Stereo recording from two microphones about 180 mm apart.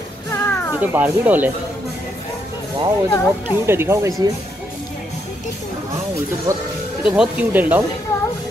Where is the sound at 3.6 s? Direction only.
15° right (ahead or behind).